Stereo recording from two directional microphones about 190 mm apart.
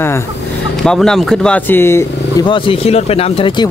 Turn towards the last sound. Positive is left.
turn(degrees=30)  # may be behind; listen again after turning